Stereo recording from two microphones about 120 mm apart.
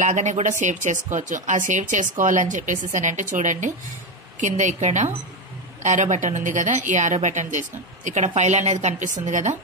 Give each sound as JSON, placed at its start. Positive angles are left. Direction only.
{"t": 0.0, "sound": "a woman's voice", "side_deg": -90}
{"t": 5.8, "sound": "a woman's voice", "side_deg": -90}